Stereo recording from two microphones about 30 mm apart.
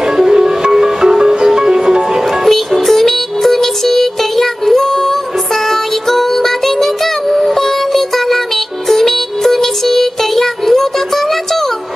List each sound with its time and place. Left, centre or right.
0.2 s music: right
2.9 s music: centre